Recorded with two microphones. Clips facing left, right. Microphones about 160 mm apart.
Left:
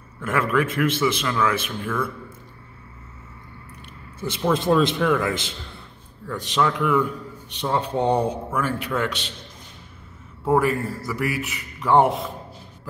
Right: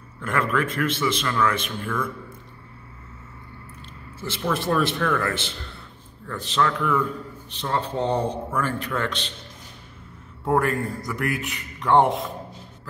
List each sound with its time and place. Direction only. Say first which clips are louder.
0.2 s a man's voice: left 2 dB; 5° left (ahead or behind)
4.2 s a man's voice: left 4 dB; 15° left (ahead or behind)
10.4 s a man's voice: left 2 dB; centre (ahead or behind)